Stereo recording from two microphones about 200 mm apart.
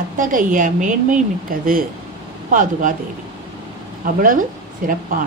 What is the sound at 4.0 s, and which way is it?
Speech, 45° right (ahead or behind).